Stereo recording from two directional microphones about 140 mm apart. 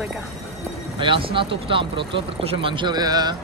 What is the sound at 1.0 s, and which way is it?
Speech, 40° right (ahead or behind).